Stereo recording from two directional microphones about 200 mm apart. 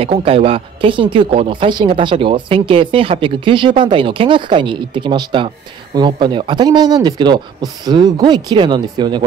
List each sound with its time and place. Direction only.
0.0 s speech: 30° right (ahead or behind)